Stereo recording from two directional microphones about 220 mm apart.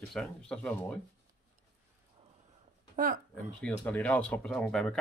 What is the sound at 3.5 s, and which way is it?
Speech, 5° left (ahead or behind).